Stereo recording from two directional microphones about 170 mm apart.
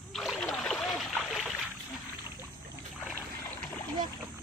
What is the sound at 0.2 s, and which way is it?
Rowboat, centre (ahead or behind).